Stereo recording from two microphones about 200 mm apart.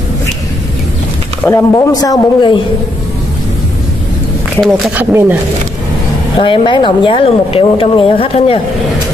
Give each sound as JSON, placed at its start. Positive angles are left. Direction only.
{"t": 1.4, "sound": "speech", "side_deg": 15}
{"t": 4.6, "sound": "speech", "side_deg": 0}
{"t": 6.3, "sound": "speech", "side_deg": 25}